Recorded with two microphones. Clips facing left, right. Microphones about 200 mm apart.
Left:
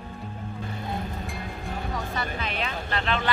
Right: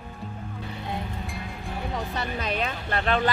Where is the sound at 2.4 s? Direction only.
45° right (ahead or behind).